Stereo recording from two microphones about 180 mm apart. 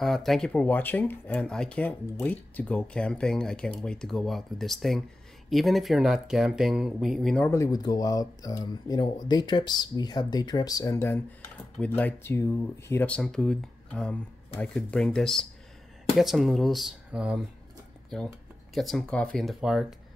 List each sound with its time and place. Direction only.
0.0 s speech: centre (ahead or behind)
7.5 s speech: 20° left (ahead or behind); by 17.5 s 5° right (ahead or behind)
18.8 s speech: centre (ahead or behind)